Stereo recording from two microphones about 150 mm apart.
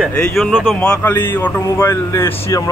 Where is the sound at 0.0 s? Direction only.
10° left (ahead or behind).